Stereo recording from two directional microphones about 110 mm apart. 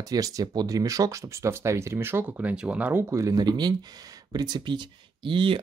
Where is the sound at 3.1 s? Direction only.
30° right (ahead or behind).